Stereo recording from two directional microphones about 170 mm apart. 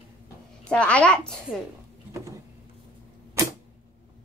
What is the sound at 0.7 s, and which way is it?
Speech, 5° left (ahead or behind).